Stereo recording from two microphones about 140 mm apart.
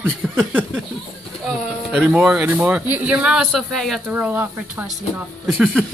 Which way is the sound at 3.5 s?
Centre (ahead or behind).